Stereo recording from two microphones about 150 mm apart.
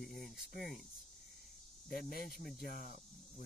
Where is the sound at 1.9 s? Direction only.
80° left.